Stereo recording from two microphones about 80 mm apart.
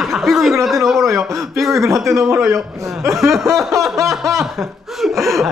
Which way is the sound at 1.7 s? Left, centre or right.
Right.